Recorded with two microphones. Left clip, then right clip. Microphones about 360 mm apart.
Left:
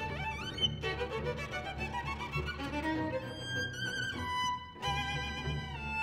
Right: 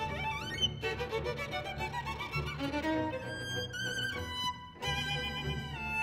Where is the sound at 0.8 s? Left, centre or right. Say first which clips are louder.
Right 1 dB; right.